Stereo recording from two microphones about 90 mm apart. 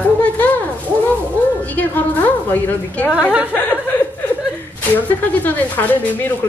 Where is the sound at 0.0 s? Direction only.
15° left (ahead or behind).